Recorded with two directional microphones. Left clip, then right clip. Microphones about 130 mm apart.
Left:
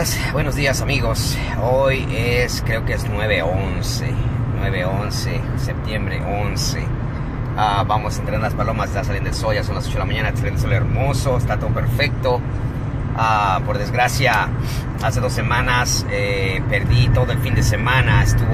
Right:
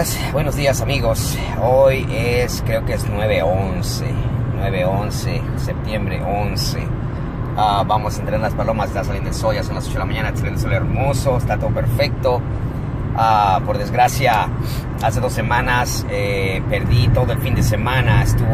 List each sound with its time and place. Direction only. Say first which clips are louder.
0.3 s speech: right 3 dB; 15° right (ahead or behind)
4.6 s speech: right 3 dB; 20° right (ahead or behind)
7.5 s speech: right 2 dB; 10° right (ahead or behind)
12.0 s speech: right 1 dB; 10° right (ahead or behind)
13.2 s speech: right 3 dB; 20° right (ahead or behind)